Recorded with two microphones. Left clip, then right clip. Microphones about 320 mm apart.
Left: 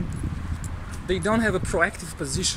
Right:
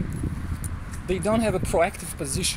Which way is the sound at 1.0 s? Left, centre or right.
Centre.